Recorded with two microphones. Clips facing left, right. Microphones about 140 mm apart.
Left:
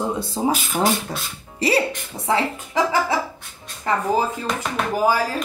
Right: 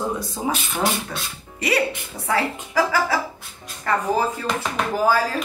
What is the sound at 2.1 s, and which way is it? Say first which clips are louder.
Speech: left 2 dB; 25° left (ahead or behind).